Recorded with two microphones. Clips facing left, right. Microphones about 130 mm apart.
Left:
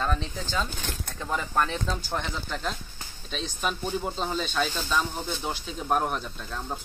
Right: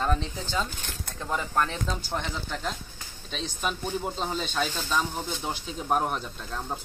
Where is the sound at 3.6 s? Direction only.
10° left (ahead or behind).